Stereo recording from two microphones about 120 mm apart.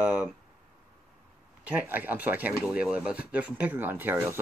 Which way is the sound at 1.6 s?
15° right (ahead or behind).